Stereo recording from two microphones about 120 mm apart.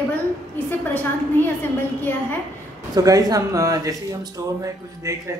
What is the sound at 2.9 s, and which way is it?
Speech, 30° right (ahead or behind).